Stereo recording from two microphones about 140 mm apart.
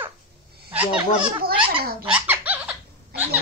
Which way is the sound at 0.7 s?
10° right (ahead or behind).